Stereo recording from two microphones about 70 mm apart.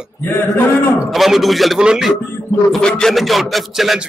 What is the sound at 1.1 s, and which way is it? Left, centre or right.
A man's voice, centre.